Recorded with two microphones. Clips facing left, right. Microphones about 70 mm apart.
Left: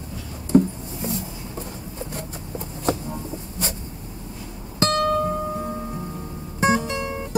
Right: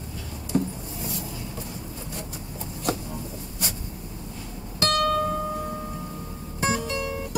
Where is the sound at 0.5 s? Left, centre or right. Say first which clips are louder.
Left 9 dB; left.